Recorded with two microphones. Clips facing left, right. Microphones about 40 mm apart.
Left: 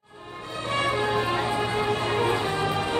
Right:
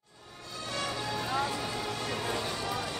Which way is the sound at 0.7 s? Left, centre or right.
Left.